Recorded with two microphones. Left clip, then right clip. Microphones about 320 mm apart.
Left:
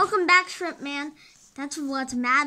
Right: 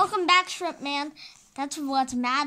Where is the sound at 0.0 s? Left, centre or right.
Centre.